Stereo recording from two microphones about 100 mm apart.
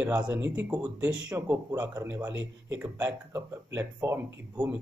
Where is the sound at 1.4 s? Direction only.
30° right (ahead or behind).